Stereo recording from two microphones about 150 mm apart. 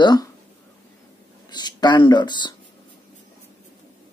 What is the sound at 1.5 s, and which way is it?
Speech, 30° left (ahead or behind).